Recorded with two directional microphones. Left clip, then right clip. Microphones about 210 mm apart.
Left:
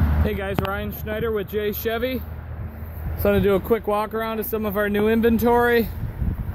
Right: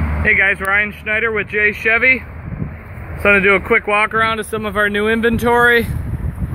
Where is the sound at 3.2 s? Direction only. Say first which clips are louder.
Right 8 dB; 20° right (ahead or behind).